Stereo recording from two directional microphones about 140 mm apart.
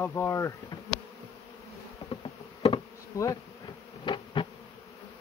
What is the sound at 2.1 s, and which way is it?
Insect, 35° left (ahead or behind).